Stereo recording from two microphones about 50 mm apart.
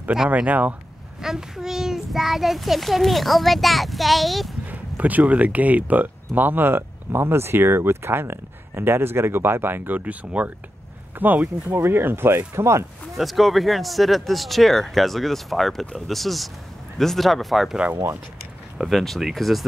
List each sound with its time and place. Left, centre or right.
0.3 s speech: right
1.2 s a child's voice: centre
4.6 s speech: right
9.9 s speech: right
11.7 s speech: right
12.5 s speech: right
13.1 s a child's voice: centre
18.9 s a child's voice: centre